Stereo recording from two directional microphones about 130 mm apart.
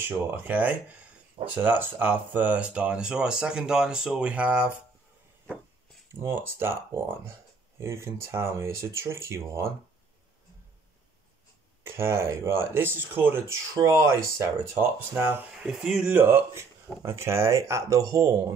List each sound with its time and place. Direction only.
0.0 s speech: 15° right (ahead or behind)
6.2 s speech: 20° right (ahead or behind)
11.8 s speech: 20° right (ahead or behind)
15.6 s speech: centre (ahead or behind); by 18.5 s 25° right (ahead or behind)